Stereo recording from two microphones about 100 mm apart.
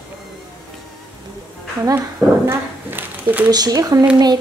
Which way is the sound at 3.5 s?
40° right (ahead or behind).